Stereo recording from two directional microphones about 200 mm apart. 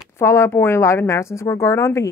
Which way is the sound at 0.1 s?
15° left (ahead or behind).